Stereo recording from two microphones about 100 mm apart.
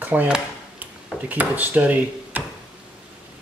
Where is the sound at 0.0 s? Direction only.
20° right (ahead or behind).